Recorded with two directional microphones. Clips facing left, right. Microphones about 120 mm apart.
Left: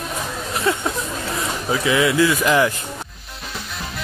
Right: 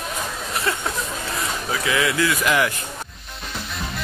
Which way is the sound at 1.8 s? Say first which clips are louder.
Left 5 dB; 25° left (ahead or behind).